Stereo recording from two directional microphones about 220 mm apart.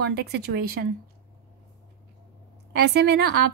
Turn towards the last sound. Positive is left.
turn(degrees=-50)  # may be behind; listen again after turning